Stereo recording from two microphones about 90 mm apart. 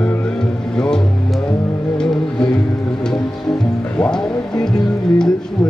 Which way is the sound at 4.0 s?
10° left (ahead or behind).